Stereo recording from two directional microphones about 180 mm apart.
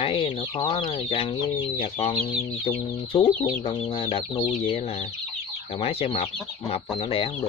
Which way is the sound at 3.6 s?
30° left (ahead or behind).